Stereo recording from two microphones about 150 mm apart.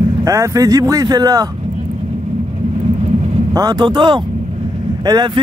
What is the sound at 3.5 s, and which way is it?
Speech, 25° right (ahead or behind).